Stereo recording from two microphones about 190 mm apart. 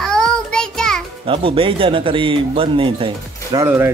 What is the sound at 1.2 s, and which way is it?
Speech, 30° right (ahead or behind).